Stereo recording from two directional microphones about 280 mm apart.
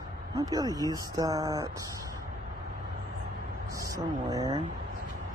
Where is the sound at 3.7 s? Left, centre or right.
Centre.